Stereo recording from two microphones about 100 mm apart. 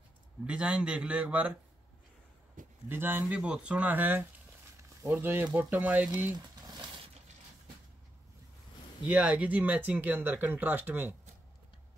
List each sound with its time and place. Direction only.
0.5 s speech: 10° right (ahead or behind)
2.9 s speech: 20° right (ahead or behind)
3.3 s speech: 10° right (ahead or behind)
6.3 s a sound: 40° right (ahead or behind)
9.0 s speech: 10° right (ahead or behind)